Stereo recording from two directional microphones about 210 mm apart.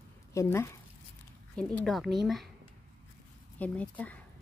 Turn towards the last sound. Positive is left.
turn(degrees=5)  # may be behind; listen again after turning